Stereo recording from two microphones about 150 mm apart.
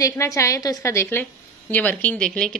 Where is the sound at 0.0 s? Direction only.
20° left (ahead or behind).